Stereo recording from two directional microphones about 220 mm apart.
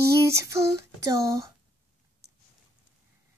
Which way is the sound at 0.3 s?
15° right (ahead or behind).